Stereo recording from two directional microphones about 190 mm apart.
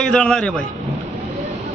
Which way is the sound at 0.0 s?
5° left (ahead or behind).